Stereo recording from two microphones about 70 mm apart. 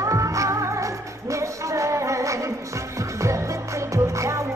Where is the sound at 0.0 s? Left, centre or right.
Right.